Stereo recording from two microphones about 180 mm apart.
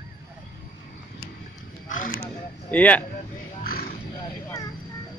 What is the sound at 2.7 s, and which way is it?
Speech, 10° left (ahead or behind).